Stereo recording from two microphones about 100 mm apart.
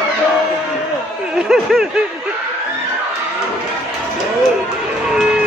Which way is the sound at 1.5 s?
Centre (ahead or behind).